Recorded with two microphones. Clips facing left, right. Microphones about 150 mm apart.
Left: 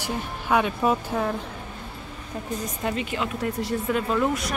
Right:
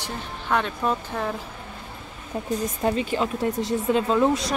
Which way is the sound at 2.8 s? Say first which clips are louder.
Right 4 dB; 35° right (ahead or behind).